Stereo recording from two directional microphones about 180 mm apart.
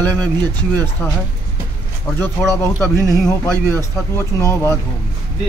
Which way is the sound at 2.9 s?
15° right (ahead or behind).